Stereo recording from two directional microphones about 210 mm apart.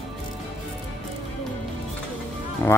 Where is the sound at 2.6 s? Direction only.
10° left (ahead or behind).